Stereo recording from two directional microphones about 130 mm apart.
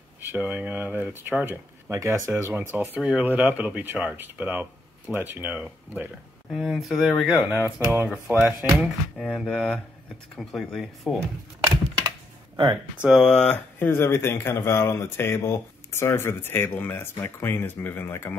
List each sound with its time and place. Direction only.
0.3 s speech: 10° right (ahead or behind)
9.2 s speech: 5° left (ahead or behind)
11.1 s computer keyboard: 30° right (ahead or behind)
13.0 s speech: centre (ahead or behind)
13.3 s speech: 10° left (ahead or behind)